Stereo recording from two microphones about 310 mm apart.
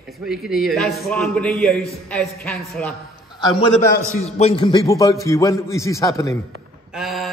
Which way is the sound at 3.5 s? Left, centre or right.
Centre.